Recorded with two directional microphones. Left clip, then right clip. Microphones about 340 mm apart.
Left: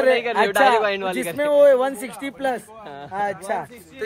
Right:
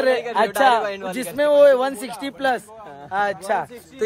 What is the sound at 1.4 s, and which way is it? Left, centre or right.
A man's voice, centre.